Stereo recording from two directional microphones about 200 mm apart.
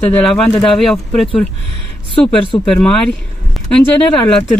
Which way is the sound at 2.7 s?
5° left (ahead or behind).